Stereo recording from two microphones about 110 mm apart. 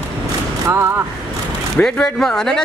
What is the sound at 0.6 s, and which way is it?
Speech, 25° right (ahead or behind).